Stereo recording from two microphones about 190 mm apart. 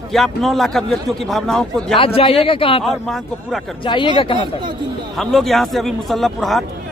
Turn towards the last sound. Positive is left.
turn(degrees=0)  # may be behind; listen again after turning